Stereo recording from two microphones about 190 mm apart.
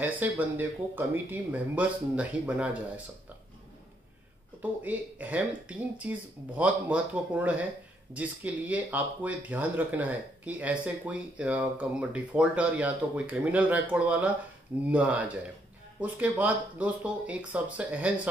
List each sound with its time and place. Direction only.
0.0 s speech: 10° right (ahead or behind)
4.6 s speech: 10° right (ahead or behind)